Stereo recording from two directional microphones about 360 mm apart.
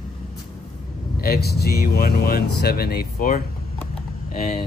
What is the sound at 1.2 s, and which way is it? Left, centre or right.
Speech, left.